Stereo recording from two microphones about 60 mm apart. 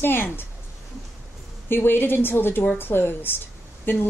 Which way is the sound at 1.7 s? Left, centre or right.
Left.